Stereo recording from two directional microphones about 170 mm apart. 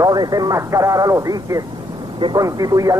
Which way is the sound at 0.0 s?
25° right (ahead or behind).